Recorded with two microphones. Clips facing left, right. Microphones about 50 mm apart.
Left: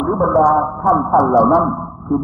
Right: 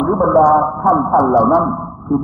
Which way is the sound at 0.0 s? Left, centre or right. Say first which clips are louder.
Right 2 dB; centre.